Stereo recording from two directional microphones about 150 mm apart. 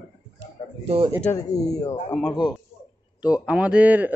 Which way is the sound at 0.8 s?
40° right (ahead or behind).